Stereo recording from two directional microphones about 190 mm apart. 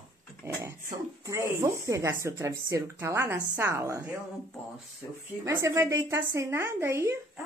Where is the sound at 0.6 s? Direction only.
15° right (ahead or behind).